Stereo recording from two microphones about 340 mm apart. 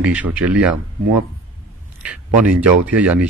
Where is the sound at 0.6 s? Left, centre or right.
Right.